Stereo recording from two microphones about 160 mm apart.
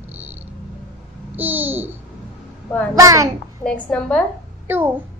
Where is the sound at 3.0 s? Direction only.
20° right (ahead or behind).